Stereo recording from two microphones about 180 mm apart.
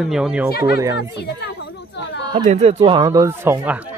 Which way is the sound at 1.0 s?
65° left (ahead or behind).